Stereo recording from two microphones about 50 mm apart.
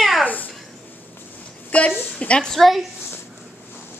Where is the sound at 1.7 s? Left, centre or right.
Left.